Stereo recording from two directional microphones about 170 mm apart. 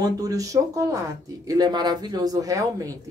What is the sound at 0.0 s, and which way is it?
Speech, 20° right (ahead or behind).